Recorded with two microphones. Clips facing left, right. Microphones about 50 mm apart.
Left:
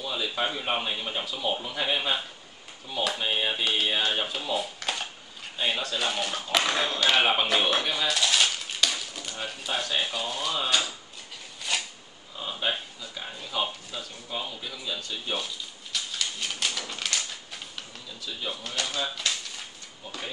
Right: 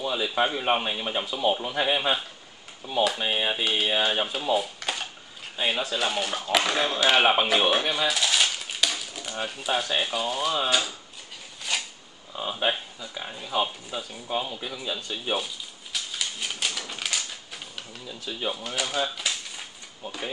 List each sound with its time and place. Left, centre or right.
0.1 s speech: centre
3.2 s speech: centre
11.7 s a sound: centre
12.4 s speech: centre
13.0 s a sound: centre
14.2 s speech: centre
15.4 s a sound: centre
18.0 s speech: right
18.5 s speech: centre